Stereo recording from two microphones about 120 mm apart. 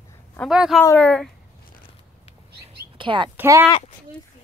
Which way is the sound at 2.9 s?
40° right (ahead or behind).